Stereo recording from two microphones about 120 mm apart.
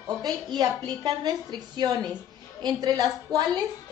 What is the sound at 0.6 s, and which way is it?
A woman's voice, 35° right (ahead or behind).